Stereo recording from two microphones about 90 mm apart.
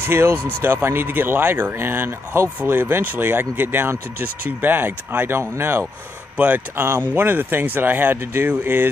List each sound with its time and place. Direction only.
0.0 s speech: 25° right (ahead or behind)